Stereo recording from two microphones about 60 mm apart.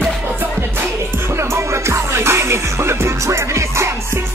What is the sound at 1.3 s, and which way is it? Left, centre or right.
Music, right.